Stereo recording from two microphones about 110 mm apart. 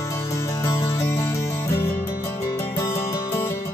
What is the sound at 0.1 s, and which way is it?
Music, 25° left (ahead or behind).